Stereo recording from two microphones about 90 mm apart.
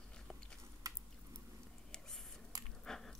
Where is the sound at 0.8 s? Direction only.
40° right (ahead or behind).